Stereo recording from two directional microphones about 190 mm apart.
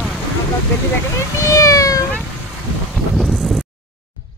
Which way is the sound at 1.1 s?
15° left (ahead or behind).